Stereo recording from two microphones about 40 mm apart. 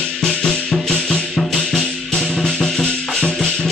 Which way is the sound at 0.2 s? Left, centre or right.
Centre.